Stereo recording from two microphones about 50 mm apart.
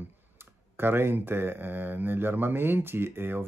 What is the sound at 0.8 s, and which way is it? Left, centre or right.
Speech, right.